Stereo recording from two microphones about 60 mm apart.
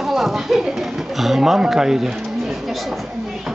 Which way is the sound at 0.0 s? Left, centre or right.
Centre.